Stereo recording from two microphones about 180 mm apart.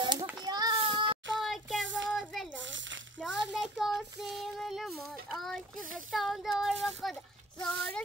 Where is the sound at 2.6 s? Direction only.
90° right.